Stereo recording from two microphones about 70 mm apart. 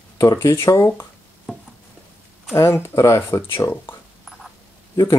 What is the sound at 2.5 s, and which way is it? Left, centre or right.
Speech, left.